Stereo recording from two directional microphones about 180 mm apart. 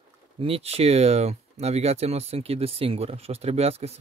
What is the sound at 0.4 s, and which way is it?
Speech, 35° right (ahead or behind).